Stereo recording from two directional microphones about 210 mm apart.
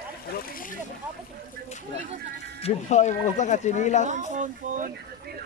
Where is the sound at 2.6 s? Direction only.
30° left (ahead or behind).